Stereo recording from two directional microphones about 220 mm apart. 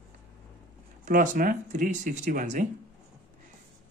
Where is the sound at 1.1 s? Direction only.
40° right (ahead or behind).